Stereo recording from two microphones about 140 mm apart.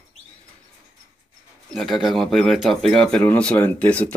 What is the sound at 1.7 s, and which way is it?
A man's voice, centre (ahead or behind).